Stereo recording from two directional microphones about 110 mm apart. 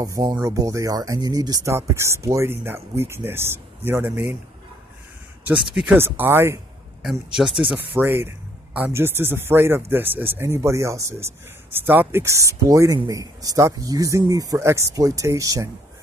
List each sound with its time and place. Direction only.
0.0 s speech: 35° right (ahead or behind); by 4.4 s 20° right (ahead or behind)
5.9 s speech: 20° right (ahead or behind)
7.0 s speech: 5° right (ahead or behind)
7.7 s speech: 20° right (ahead or behind)